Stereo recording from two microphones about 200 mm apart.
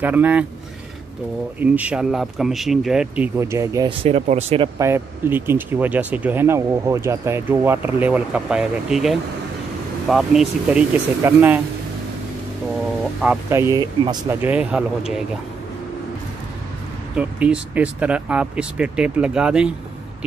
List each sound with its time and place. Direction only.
0.0 s speech: 10° right (ahead or behind)
1.6 s speech: 5° right (ahead or behind)
4.0 s speech: 30° right (ahead or behind)
4.7 s speech: 15° right (ahead or behind)
13.2 s speech: 10° right (ahead or behind)
14.4 s speech: 5° right (ahead or behind)
17.1 s speech: 5° right (ahead or behind)